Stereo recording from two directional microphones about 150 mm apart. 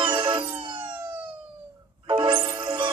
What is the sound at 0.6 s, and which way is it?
Emergency vehicle, 30° right (ahead or behind).